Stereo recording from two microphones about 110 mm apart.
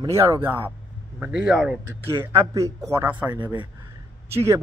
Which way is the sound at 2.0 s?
30° right (ahead or behind).